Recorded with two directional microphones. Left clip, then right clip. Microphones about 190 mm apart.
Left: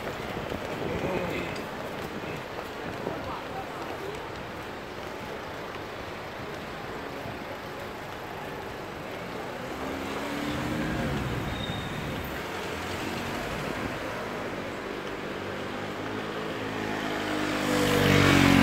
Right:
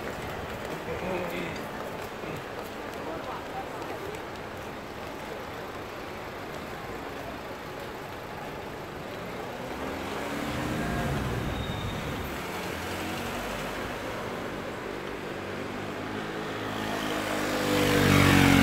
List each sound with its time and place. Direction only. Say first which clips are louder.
17.0 s vehicle: even; 25° right (ahead or behind); by 18.6 s 45° right (ahead or behind)